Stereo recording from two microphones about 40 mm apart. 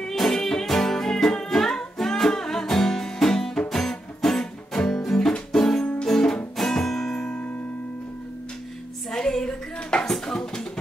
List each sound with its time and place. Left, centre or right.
0.1 s music: centre
9.1 s dishes: centre
10.2 s drum: centre